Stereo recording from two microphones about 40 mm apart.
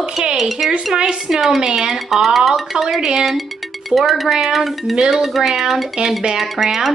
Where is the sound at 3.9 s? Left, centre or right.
Centre.